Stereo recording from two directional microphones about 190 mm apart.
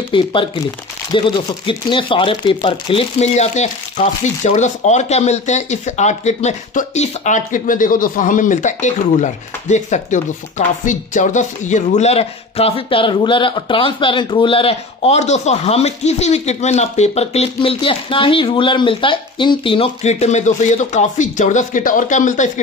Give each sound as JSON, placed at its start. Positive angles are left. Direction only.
{"t": 0.1, "sound": "speech", "side_deg": 25}